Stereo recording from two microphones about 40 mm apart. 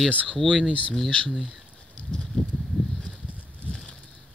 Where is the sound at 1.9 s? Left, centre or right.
Left.